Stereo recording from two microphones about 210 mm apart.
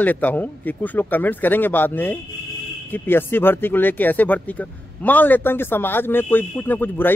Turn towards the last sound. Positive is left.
turn(degrees=10)  # may be behind; listen again after turning